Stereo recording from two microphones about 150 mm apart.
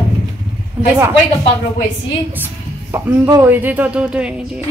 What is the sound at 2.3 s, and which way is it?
Music, 15° right (ahead or behind).